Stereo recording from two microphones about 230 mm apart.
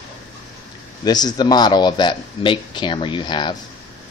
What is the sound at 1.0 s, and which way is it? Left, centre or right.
Speech, centre.